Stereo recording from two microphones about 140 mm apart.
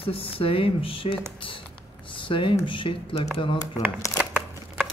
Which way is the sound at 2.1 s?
35° left (ahead or behind).